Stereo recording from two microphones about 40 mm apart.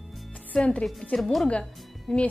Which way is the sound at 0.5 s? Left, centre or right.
Centre.